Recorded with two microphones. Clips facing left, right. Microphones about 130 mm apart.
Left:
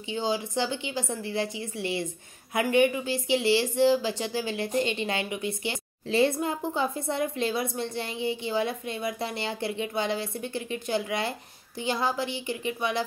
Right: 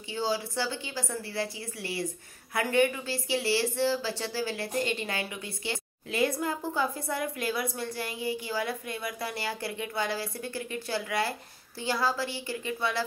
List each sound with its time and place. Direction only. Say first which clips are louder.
0.1 s a woman's voice: left 2 dB; 20° left (ahead or behind)